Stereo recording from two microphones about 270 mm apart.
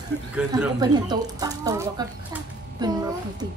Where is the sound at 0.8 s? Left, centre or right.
Centre.